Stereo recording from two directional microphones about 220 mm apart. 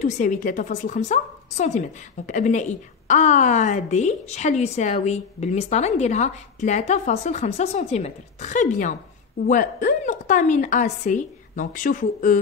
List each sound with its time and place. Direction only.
0.0 s a woman's voice: 35° left (ahead or behind)